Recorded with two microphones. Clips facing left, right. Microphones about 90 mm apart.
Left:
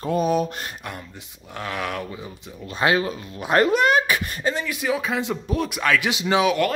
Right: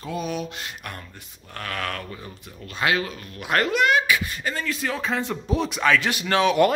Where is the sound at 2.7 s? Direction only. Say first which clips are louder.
Left 3 dB; 25° left (ahead or behind).